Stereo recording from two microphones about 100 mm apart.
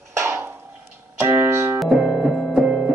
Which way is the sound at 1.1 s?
25° right (ahead or behind).